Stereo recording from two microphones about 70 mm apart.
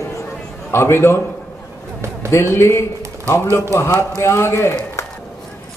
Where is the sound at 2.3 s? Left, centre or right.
Left.